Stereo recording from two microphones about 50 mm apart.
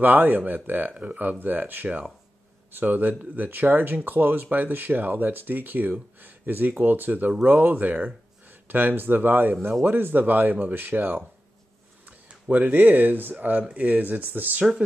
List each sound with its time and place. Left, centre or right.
0.0 s speech: right
12.1 s speech: right